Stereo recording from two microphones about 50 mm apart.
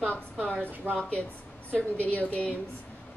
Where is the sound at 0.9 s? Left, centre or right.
Right.